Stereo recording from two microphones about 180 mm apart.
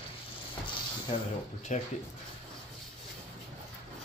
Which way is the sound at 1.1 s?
40° left (ahead or behind).